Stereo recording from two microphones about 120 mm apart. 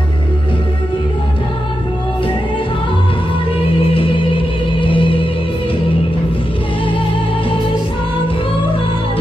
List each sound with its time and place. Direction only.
3.9 s music: 50° left (ahead or behind)